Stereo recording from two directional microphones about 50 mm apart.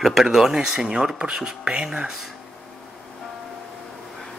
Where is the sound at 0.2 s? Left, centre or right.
Centre.